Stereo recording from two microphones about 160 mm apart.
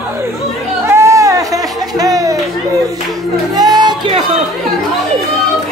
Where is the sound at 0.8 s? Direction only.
15° right (ahead or behind).